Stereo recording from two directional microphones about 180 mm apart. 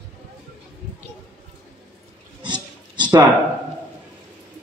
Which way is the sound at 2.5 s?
25° right (ahead or behind).